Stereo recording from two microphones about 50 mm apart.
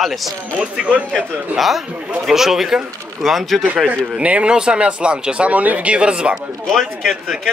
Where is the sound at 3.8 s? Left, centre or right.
Right.